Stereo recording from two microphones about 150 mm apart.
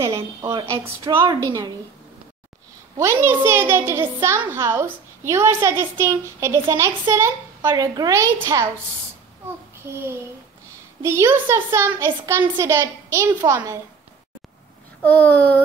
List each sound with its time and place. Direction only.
0.0 s a woman's voice: 25° right (ahead or behind)
3.2 s a woman's voice: 15° right (ahead or behind)
11.0 s a woman's voice: 15° right (ahead or behind)
15.0 s a child's voice: 10° left (ahead or behind)